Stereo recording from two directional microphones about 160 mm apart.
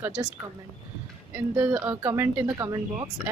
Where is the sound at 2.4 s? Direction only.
25° right (ahead or behind).